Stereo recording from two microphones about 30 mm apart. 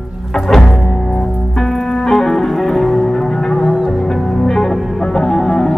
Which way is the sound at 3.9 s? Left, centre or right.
Centre.